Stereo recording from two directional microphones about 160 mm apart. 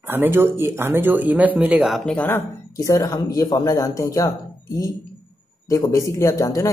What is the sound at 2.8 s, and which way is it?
A man's voice, 20° left (ahead or behind).